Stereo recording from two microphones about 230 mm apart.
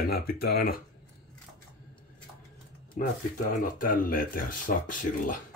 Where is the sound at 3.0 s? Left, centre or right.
Left.